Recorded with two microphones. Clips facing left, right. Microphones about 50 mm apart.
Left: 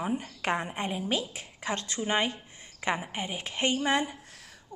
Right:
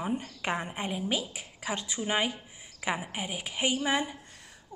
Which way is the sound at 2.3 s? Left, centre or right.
Centre.